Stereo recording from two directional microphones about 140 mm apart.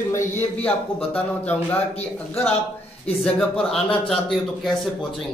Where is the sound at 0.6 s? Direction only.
10° left (ahead or behind).